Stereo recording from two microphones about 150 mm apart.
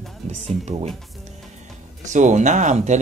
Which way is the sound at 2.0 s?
55° right (ahead or behind).